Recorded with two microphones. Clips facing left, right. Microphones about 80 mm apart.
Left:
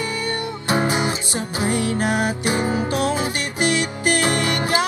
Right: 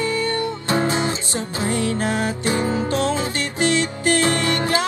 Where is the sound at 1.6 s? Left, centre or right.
Centre.